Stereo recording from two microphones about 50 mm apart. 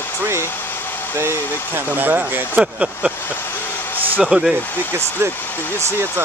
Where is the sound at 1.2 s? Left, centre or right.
Right.